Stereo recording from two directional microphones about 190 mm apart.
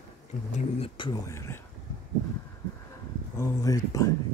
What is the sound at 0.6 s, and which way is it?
Speech, 30° left (ahead or behind).